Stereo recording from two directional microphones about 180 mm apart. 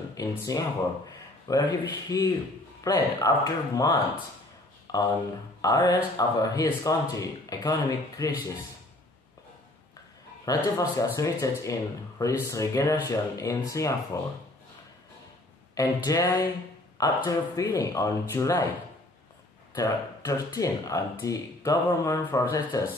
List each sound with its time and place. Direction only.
0.1 s speech: 20° left (ahead or behind)
10.4 s speech: 20° left (ahead or behind)
15.7 s speech: 20° left (ahead or behind)
19.7 s speech: 20° left (ahead or behind)